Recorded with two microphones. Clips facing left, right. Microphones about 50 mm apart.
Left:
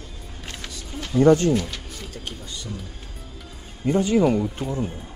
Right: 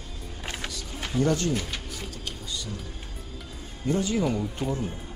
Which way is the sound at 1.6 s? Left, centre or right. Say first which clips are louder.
Left 2 dB; centre.